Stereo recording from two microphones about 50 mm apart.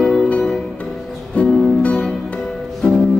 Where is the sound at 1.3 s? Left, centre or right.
Left.